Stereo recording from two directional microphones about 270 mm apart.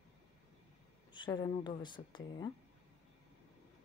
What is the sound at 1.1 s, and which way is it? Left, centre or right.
A woman's voice, centre.